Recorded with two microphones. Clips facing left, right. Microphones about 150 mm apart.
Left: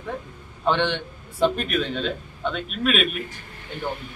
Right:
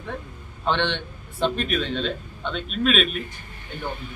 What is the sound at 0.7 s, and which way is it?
A man's voice, 10° left (ahead or behind).